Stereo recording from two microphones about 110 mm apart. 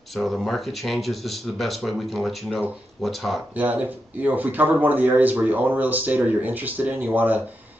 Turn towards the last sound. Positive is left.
turn(degrees=-15)  # may be behind; listen again after turning